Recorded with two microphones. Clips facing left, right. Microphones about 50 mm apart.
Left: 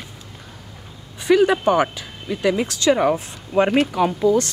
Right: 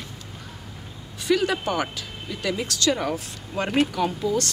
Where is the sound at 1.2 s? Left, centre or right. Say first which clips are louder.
Left 7 dB; left.